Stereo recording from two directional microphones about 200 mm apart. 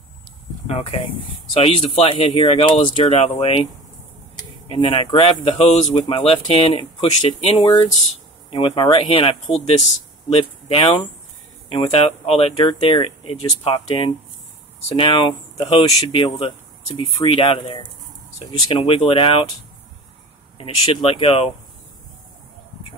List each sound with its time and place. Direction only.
0.7 s speech: 30° left (ahead or behind)
10.3 s speech: 25° left (ahead or behind)
20.5 s speech: 30° left (ahead or behind)